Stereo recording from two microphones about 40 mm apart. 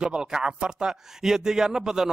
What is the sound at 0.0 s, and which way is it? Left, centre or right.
A man's voice, centre.